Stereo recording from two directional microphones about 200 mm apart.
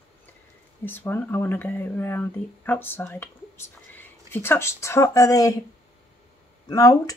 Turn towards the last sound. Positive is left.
turn(degrees=15)  # may be behind; listen again after turning